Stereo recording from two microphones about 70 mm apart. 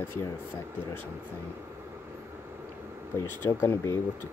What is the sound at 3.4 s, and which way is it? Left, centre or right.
Speech, left.